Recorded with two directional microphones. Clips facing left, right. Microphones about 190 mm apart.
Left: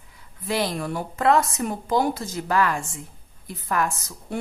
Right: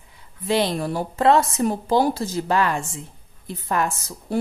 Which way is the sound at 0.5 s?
25° right (ahead or behind).